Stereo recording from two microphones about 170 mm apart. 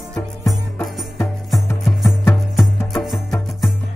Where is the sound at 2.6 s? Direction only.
Centre (ahead or behind).